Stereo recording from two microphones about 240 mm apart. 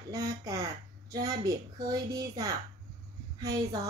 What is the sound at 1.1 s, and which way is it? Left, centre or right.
A woman's voice, centre.